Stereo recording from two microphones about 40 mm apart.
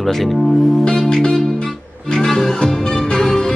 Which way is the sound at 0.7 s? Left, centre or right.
Centre.